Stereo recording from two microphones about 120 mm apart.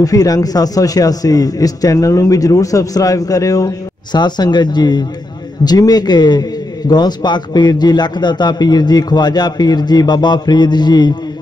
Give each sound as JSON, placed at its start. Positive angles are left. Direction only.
{"t": 0.0, "sound": "a man's voice", "side_deg": 30}